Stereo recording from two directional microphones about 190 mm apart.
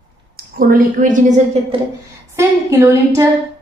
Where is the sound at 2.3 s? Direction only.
15° right (ahead or behind).